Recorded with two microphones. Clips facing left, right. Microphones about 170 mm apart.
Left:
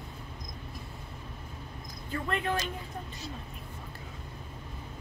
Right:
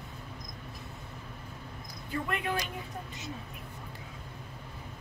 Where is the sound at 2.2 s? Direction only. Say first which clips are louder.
Left 4 dB; 10° right (ahead or behind).